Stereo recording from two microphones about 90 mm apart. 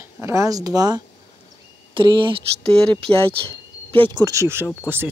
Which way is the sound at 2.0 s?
65° right (ahead or behind).